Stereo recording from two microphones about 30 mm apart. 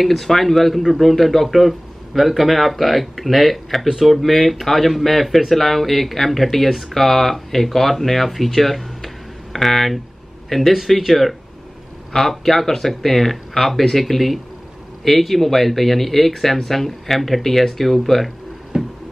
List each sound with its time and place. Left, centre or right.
0.0 s speech: centre
11.0 s speech: centre
12.1 s speech: centre
18.7 s a sound: right